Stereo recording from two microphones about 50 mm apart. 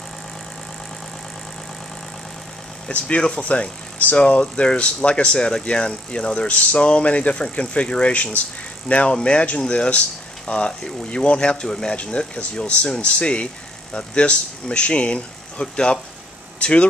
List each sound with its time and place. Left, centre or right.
2.9 s speech: left